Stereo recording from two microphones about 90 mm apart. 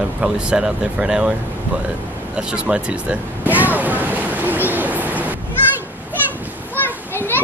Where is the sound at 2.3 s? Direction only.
10° right (ahead or behind).